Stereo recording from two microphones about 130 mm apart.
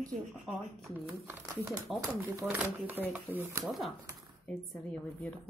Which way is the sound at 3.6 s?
Centre (ahead or behind).